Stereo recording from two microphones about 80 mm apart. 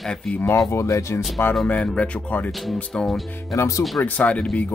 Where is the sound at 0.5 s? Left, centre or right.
Left.